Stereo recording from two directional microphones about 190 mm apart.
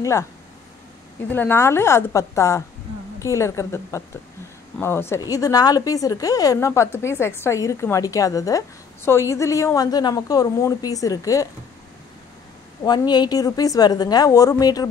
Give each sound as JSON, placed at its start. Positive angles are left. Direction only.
{"t": 0.0, "sound": "a woman's voice", "side_deg": 15}
{"t": 1.3, "sound": "a woman's voice", "side_deg": 10}
{"t": 12.8, "sound": "a woman's voice", "side_deg": 20}